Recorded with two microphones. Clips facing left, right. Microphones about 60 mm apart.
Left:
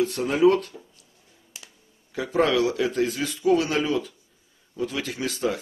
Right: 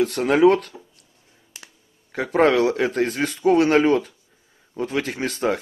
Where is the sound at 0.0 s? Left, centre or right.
Right.